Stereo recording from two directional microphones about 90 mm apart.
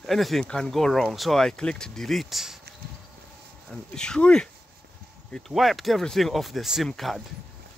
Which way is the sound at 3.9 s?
10° left (ahead or behind).